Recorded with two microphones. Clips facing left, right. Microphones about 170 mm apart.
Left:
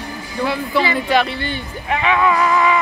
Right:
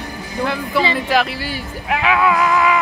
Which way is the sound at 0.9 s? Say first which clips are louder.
Left 1 dB; centre (ahead or behind).